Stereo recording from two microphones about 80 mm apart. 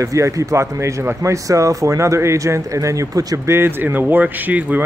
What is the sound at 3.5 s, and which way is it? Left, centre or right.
Speech, right.